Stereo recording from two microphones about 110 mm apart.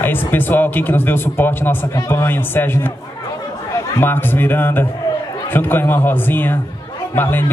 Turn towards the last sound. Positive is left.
turn(degrees=20)  # may be behind; listen again after turning